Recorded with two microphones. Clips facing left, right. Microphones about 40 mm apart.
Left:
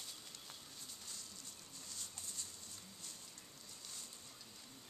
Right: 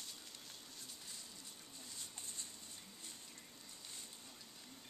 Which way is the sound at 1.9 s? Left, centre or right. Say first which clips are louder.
Left 1 dB; right.